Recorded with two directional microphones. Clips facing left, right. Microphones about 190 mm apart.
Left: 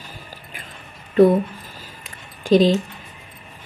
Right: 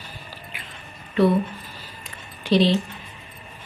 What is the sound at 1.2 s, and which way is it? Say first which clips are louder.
Speech: left 6 dB; 45° left (ahead or behind).